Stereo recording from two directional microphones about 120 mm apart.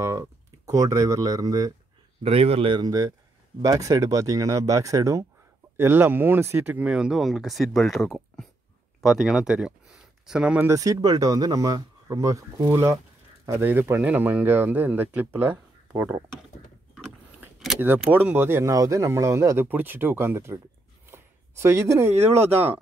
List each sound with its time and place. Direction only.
0.0 s speech: 25° right (ahead or behind)
2.2 s speech: 55° right (ahead or behind)
2.8 s speech: 30° right (ahead or behind); by 10.7 s 10° right (ahead or behind)
10.7 s speech: 30° right (ahead or behind)
17.7 s speech: 15° right (ahead or behind)
21.1 s a sound: 20° right (ahead or behind)